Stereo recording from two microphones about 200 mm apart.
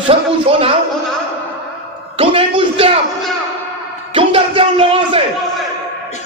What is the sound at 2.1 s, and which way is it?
Speech, 30° right (ahead or behind).